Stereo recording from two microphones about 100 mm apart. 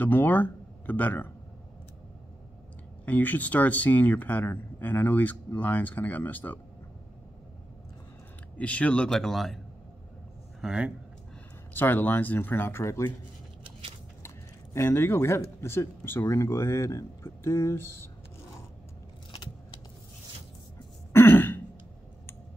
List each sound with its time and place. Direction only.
0.0 s speech: 20° left (ahead or behind)
3.1 s speech: 15° left (ahead or behind)
8.5 s speech: 15° left (ahead or behind)
10.6 s speech: 10° right (ahead or behind)
11.7 s speech: 20° left (ahead or behind)
14.2 s speech: 25° left (ahead or behind)
21.1 s throat clearing: 20° left (ahead or behind)